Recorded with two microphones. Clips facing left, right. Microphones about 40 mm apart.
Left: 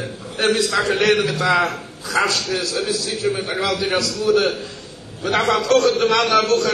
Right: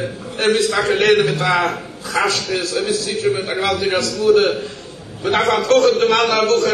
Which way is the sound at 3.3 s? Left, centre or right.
Centre.